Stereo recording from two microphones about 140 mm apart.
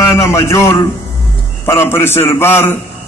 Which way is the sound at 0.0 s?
20° left (ahead or behind).